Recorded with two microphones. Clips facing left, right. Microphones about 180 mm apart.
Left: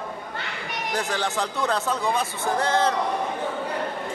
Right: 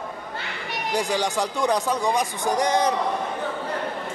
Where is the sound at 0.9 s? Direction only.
15° right (ahead or behind).